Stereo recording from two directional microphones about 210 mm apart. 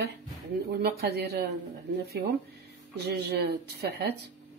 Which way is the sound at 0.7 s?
50° right (ahead or behind).